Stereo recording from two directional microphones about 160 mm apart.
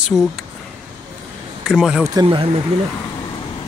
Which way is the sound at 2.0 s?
25° right (ahead or behind).